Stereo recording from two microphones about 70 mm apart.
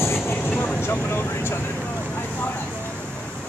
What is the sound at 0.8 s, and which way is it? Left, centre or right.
Vehicle, left.